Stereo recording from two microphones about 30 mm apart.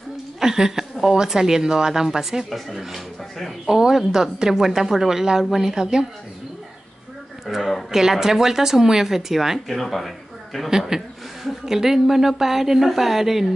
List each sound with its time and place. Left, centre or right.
0.4 s a woman's voice: centre
2.5 s speech: centre
3.6 s speech: centre
7.5 s speech: centre
9.7 s speech: centre
10.9 s speech: centre